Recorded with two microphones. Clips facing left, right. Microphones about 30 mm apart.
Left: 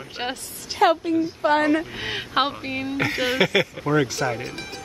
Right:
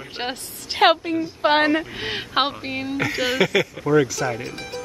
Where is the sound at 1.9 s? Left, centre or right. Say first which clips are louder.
Right 1 dB; centre.